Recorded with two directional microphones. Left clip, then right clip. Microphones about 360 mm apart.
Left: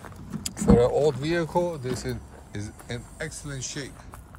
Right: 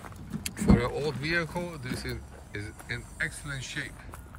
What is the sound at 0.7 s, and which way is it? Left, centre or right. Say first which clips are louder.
Speech: left 9 dB; centre.